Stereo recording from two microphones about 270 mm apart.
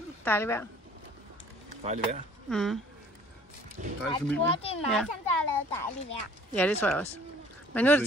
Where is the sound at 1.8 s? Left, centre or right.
Right.